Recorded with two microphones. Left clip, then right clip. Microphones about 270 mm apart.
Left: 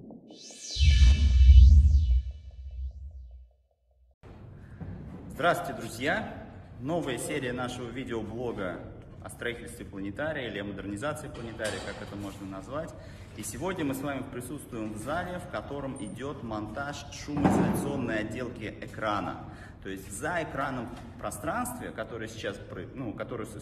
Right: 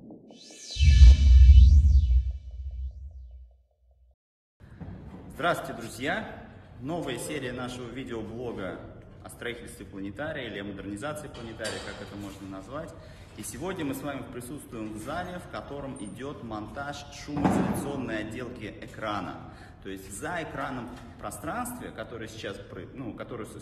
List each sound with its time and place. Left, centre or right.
0.5 s music: centre
5.3 s a man's voice: centre